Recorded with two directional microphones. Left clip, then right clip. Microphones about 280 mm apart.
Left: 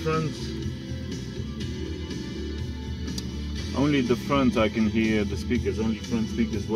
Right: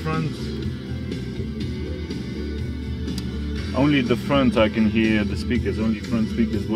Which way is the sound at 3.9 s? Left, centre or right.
Right.